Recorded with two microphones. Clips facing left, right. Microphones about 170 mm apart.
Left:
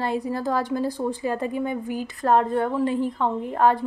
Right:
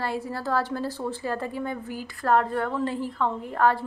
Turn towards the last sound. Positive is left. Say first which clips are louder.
# left 3 dB
turn(degrees=20)  # may be behind; listen again after turning